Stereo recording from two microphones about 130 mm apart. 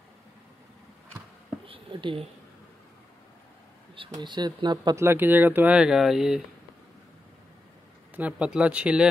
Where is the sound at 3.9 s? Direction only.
40° right (ahead or behind).